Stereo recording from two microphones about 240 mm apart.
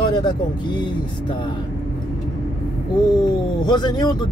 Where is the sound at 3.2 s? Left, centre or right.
Centre.